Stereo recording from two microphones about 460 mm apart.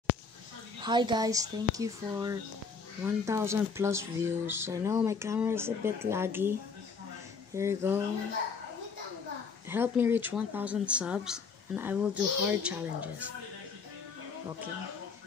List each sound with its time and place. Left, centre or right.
0.7 s speech: centre
7.5 s speech: centre
9.7 s speech: centre